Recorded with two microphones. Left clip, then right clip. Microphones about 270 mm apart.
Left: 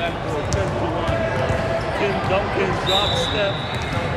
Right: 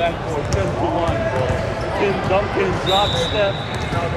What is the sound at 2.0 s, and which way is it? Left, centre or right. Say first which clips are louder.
Basketball bounce: right 4 dB; right.